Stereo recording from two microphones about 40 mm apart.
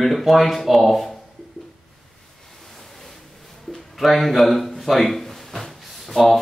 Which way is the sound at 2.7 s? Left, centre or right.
Centre.